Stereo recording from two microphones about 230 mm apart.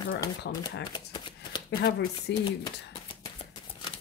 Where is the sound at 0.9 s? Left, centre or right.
Left.